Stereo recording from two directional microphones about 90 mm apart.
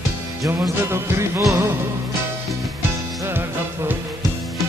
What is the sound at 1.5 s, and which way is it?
Speech, 30° right (ahead or behind).